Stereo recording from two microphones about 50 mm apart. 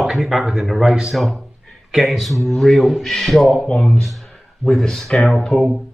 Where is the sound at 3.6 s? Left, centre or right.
Centre.